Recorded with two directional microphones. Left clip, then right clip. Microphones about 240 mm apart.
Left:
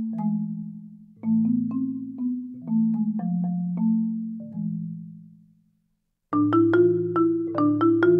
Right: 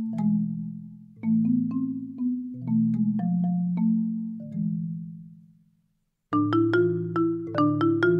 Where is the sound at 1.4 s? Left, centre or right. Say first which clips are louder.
Left 1 dB; right.